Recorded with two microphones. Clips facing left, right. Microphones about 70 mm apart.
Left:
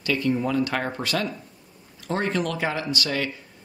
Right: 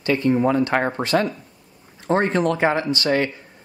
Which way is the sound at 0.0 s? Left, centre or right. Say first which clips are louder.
Right 5 dB; right.